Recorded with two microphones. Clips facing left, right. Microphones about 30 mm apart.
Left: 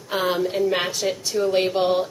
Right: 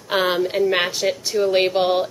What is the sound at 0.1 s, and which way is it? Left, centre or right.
A woman's voice, right.